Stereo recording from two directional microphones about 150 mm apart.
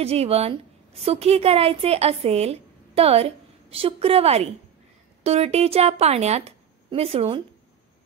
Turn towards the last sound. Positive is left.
turn(degrees=-40)  # may be behind; listen again after turning